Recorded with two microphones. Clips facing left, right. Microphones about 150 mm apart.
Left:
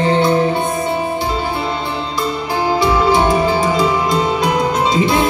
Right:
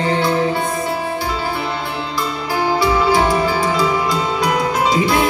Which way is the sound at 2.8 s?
20° left (ahead or behind).